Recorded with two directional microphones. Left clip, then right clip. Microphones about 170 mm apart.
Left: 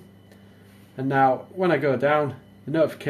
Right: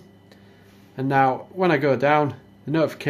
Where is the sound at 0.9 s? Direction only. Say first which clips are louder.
Right 1 dB; 25° right (ahead or behind).